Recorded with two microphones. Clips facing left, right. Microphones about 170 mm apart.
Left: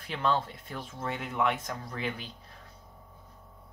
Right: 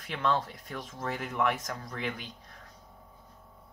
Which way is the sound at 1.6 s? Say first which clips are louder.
Left 1 dB; 30° left (ahead or behind).